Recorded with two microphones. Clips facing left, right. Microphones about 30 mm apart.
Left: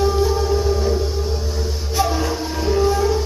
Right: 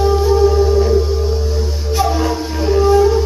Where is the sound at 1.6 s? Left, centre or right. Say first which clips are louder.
Right 3 dB; centre.